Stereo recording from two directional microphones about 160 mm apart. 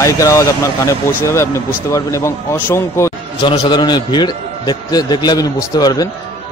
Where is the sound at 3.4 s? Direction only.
30° left (ahead or behind).